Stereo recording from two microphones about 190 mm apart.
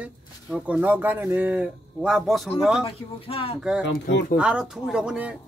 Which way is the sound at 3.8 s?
70° left (ahead or behind).